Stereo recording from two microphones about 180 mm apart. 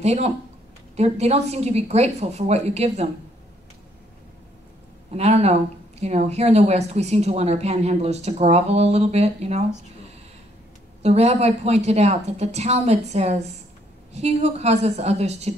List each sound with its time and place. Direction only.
0.0 s speech: 35° right (ahead or behind)
5.1 s speech: 35° right (ahead or behind)
11.0 s speech: 35° right (ahead or behind)